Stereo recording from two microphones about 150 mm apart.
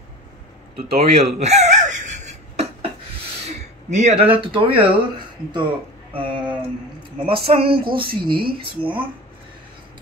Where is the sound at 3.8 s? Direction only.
50° right (ahead or behind).